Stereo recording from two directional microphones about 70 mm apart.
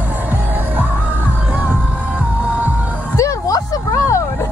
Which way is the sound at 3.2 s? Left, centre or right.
Left.